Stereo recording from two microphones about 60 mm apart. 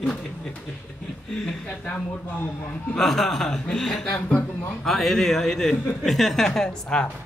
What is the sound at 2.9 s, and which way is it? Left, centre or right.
A woman's voice, centre.